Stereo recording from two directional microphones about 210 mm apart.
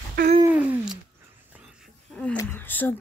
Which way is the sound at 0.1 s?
40° right (ahead or behind).